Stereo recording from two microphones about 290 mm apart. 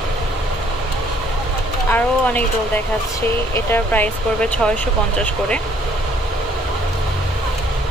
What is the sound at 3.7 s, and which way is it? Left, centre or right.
Speech, centre.